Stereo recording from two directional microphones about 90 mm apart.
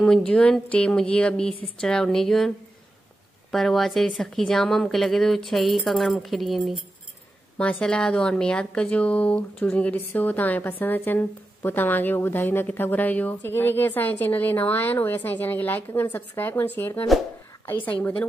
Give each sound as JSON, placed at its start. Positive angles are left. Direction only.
{"t": 0.0, "sound": "speech", "side_deg": 10}
{"t": 3.5, "sound": "a woman's voice", "side_deg": 5}
{"t": 7.5, "sound": "a woman's voice", "side_deg": 10}